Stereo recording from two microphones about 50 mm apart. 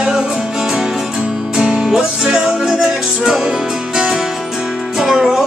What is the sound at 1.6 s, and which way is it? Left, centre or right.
Music, centre.